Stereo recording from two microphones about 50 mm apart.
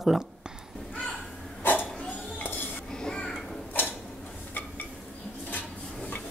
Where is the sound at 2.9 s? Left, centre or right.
Centre.